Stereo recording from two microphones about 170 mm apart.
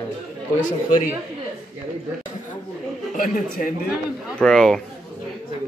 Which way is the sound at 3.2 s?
50° left (ahead or behind).